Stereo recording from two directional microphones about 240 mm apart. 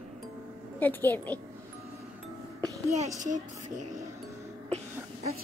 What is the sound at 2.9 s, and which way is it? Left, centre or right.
A child's voice, right.